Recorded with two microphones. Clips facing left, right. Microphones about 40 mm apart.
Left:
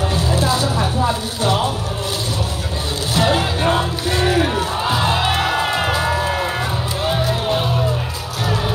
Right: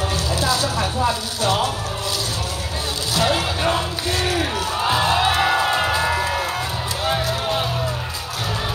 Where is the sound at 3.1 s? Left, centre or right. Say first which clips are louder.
Left 3 dB; left.